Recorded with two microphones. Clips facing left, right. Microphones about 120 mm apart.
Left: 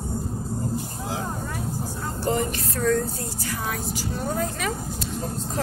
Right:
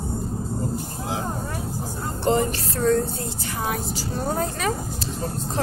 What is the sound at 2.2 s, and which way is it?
Speech, 35° right (ahead or behind).